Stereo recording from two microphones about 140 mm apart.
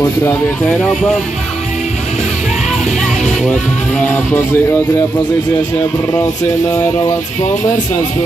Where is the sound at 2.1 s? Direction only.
Centre (ahead or behind); by 5.0 s 15° left (ahead or behind).